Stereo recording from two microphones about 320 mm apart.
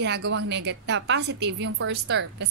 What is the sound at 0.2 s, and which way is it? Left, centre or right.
Speech, right.